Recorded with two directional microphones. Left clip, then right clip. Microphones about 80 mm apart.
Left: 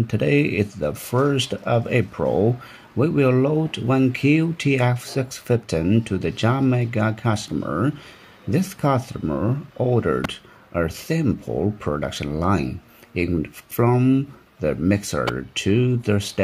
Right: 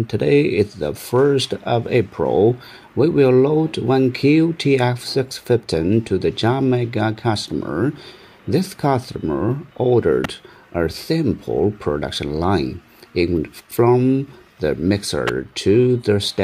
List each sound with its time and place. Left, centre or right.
0.0 s speech: centre
2.2 s speech: left
3.0 s speech: centre